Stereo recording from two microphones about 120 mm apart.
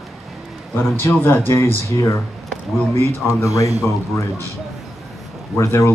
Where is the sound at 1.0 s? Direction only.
20° left (ahead or behind).